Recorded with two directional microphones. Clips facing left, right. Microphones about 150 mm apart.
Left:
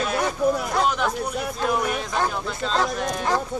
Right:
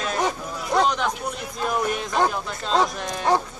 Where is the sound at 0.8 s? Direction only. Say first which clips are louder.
Left 1 dB; 5° left (ahead or behind).